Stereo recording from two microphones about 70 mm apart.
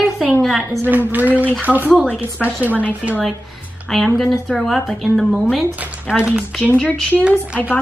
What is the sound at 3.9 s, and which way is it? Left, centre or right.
A woman's voice, centre.